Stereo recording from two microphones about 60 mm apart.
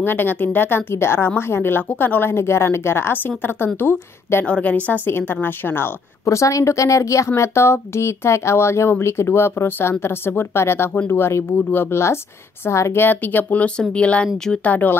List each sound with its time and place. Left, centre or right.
0.0 s a woman's voice: left
2.3 s speech: left
4.5 s a woman's voice: left
6.2 s a woman's voice: left
7.2 s speech: left
13.0 s a woman's voice: left